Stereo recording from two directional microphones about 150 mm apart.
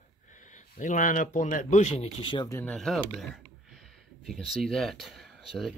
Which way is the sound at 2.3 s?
25° left (ahead or behind).